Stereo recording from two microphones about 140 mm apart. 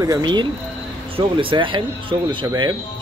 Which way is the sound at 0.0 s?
30° right (ahead or behind).